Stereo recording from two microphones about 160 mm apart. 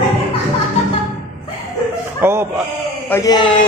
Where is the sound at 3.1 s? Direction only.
25° left (ahead or behind).